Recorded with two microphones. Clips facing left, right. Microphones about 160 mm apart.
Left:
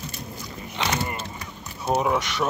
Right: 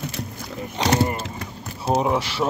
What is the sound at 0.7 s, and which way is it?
Rowboat, 40° right (ahead or behind).